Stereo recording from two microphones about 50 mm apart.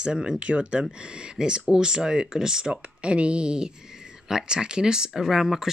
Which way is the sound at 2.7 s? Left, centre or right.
Right.